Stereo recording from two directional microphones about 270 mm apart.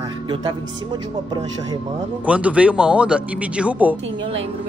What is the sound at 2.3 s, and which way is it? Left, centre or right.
Speech, centre.